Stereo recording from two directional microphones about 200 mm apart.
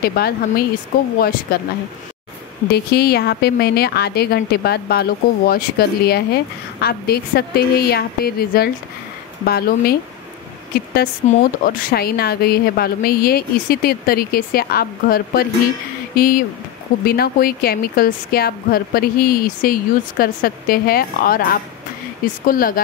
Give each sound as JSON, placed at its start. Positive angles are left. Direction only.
{"t": 0.0, "sound": "a woman's voice", "side_deg": 50}
{"t": 2.7, "sound": "a woman's voice", "side_deg": 50}
{"t": 11.2, "sound": "a woman's voice", "side_deg": 50}